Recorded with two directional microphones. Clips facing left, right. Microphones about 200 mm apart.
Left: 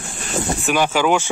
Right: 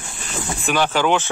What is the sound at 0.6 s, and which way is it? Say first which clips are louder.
Speech: even; 10° left (ahead or behind).